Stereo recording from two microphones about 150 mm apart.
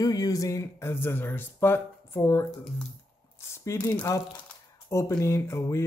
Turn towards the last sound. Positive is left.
turn(degrees=20)  # may be behind; listen again after turning